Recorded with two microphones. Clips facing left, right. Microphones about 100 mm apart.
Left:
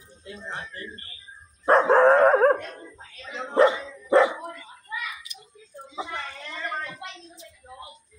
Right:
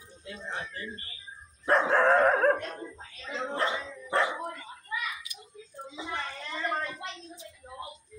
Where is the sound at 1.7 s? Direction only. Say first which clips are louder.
Left 6 dB; 40° left (ahead or behind).